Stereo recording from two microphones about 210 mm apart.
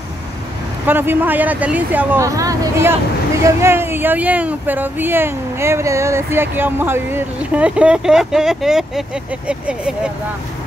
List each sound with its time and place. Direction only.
0.8 s speech: 10° right (ahead or behind)